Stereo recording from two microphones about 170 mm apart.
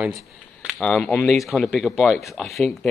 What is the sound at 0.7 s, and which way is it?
Speech, 5° left (ahead or behind).